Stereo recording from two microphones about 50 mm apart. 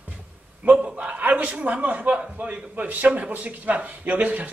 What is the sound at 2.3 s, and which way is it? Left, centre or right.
A man's voice, right.